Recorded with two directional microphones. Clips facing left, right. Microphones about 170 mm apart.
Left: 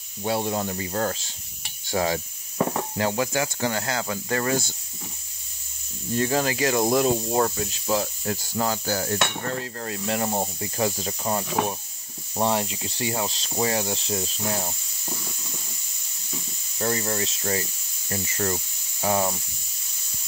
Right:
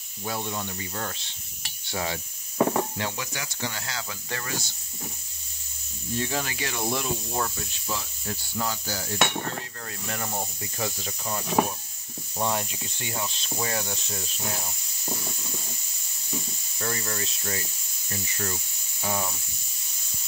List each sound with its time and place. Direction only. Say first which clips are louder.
0.2 s speech: left 7 dB; 30° left (ahead or behind)
1.9 s insect: left 7 dB; 45° left (ahead or behind)
6.1 s insect: left 7 dB; 45° left (ahead or behind)
9.8 s speech: left 8 dB; 30° left (ahead or behind)
12.4 s speech: left 4 dB; 25° left (ahead or behind)
16.7 s speech: left 6 dB; 30° left (ahead or behind)
18.1 s speech: left 6 dB; 50° left (ahead or behind)